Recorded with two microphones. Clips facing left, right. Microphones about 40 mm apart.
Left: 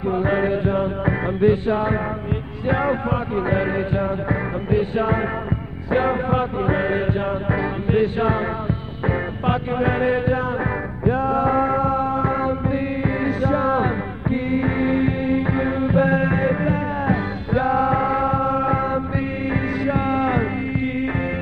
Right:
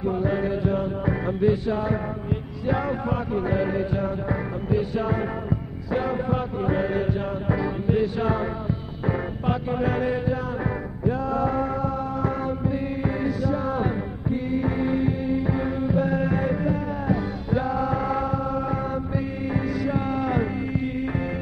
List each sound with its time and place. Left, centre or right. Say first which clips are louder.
0.0 s music: left 4 dB; left